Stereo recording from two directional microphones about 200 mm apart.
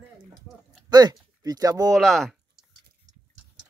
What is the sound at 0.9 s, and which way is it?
Speech, 20° right (ahead or behind).